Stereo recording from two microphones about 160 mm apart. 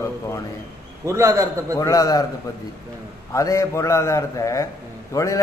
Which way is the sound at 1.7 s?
20° left (ahead or behind).